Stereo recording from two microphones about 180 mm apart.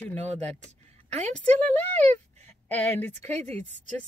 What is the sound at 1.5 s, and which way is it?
Speech, 10° left (ahead or behind).